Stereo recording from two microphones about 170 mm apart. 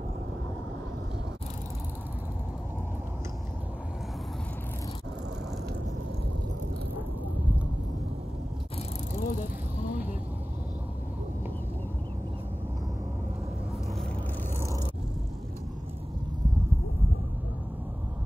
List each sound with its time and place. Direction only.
9.2 s vehicle: 55° left (ahead or behind)